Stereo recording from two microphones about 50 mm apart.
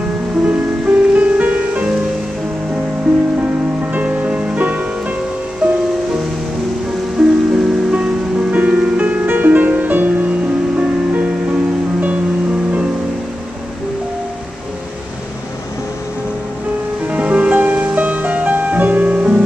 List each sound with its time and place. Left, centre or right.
0.5 s music: right
3.9 s music: right
7.2 s music: centre
9.0 s music: right
17.1 s music: right